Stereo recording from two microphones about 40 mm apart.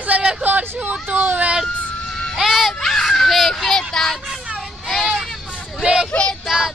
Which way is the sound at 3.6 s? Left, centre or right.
Centre.